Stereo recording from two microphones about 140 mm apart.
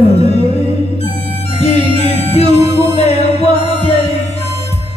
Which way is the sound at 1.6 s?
50° left (ahead or behind).